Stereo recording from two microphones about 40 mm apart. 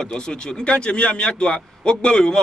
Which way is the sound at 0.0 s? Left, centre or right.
Centre.